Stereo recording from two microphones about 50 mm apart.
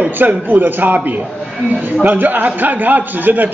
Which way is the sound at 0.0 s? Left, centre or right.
Right.